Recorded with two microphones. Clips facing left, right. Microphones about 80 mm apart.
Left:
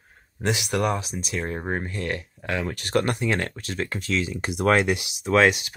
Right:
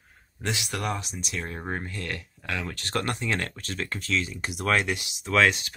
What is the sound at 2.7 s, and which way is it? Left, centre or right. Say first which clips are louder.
Speech: left 7 dB; centre.